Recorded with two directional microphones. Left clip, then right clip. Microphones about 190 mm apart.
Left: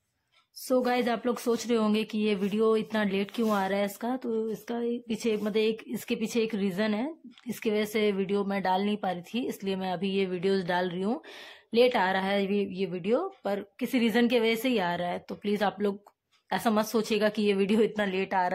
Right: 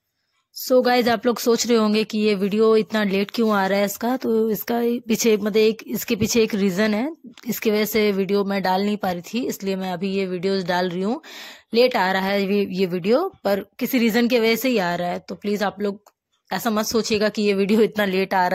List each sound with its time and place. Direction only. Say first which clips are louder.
0.6 s a woman's voice: right 9 dB; 25° right (ahead or behind)